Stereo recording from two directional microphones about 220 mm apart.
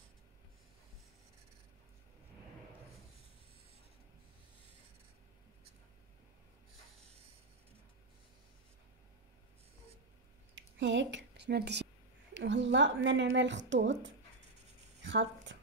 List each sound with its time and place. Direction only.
10.5 s a woman's voice: 55° right (ahead or behind)
15.0 s a woman's voice: 55° right (ahead or behind)